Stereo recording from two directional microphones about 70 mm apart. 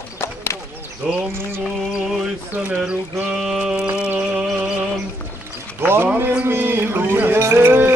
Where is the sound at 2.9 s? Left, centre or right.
Centre.